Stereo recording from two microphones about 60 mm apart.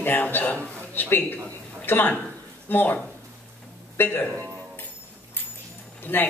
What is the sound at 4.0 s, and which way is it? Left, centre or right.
Speech, left.